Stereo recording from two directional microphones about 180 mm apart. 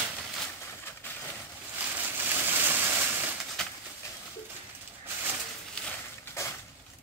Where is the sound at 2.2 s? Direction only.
10° right (ahead or behind).